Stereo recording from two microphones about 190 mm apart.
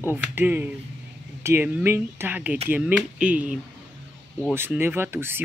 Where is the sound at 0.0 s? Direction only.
10° right (ahead or behind).